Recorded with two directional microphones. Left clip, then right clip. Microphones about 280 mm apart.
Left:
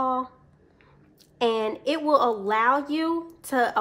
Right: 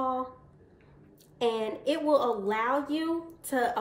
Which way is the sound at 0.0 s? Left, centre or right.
Left.